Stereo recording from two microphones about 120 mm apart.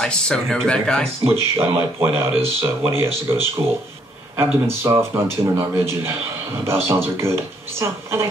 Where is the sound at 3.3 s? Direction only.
25° right (ahead or behind).